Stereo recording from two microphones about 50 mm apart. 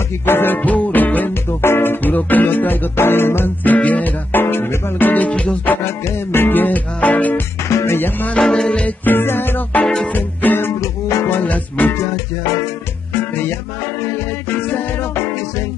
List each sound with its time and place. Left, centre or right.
0.3 s music: left
0.6 s music: left
1.6 s music: left
3.6 s music: left
6.3 s music: left
7.8 s music: left
8.4 s music: centre
8.8 s music: left
10.8 s music: left
11.4 s music: left